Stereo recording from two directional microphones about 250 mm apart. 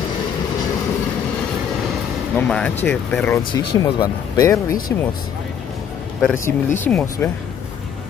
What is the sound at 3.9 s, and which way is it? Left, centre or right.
Speech, centre.